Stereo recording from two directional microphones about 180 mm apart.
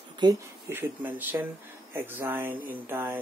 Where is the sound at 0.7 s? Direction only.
10° right (ahead or behind).